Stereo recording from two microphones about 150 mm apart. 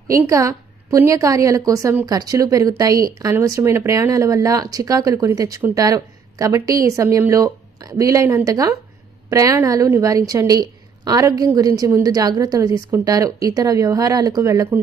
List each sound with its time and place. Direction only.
0.3 s speech: 20° right (ahead or behind)